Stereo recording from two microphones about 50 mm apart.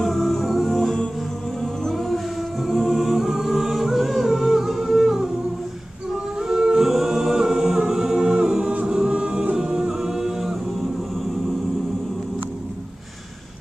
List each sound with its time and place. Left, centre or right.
0.0 s music: centre
1.6 s a capella: centre
6.4 s a capella: centre